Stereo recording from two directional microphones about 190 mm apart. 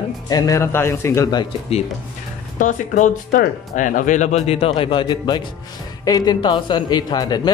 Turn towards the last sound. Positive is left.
turn(degrees=20)  # may be behind; listen again after turning